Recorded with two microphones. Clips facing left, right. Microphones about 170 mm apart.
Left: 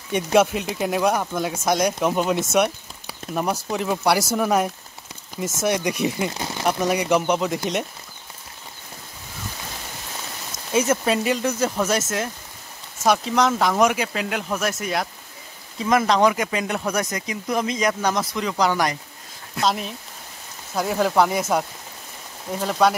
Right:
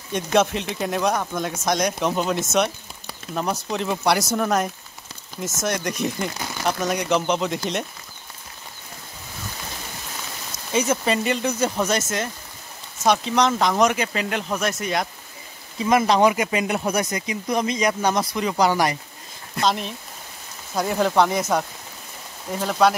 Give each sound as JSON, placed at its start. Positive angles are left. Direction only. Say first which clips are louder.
{"t": 0.1, "sound": "speech", "louder": "left 2 dB", "side_deg": 5}
{"t": 6.3, "sound": "speech", "louder": "left 2 dB", "side_deg": 25}
{"t": 6.6, "sound": "speech", "louder": "left 2 dB", "side_deg": 10}
{"t": 10.7, "sound": "speech", "louder": "left 1 dB", "side_deg": 5}
{"t": 17.1, "sound": "speech", "louder": "right 1 dB", "side_deg": 0}